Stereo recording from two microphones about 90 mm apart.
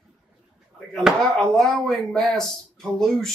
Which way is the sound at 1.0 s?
Centre (ahead or behind).